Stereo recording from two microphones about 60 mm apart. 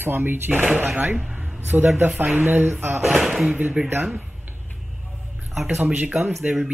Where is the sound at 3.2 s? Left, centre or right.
Centre.